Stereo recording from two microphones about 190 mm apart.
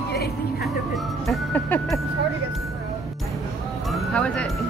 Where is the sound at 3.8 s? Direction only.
Centre (ahead or behind).